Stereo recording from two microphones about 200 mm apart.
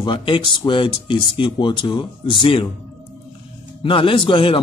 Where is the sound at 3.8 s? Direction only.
25° left (ahead or behind).